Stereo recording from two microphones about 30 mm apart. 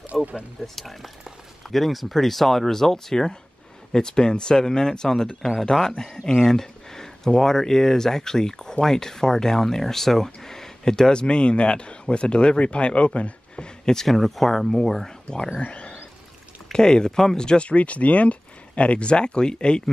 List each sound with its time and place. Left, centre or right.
0.0 s speech: right
0.7 s speech: centre
3.9 s speech: left
6.4 s a sound: centre
7.2 s speech: centre
11.1 s speech: left
14.0 s speech: centre
15.6 s a sound: left
16.7 s speech: left
17.5 s speech: left